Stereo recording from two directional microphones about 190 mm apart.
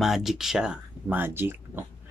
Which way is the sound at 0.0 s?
Centre (ahead or behind).